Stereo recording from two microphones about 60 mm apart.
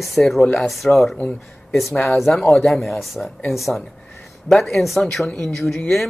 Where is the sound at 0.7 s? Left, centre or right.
Centre.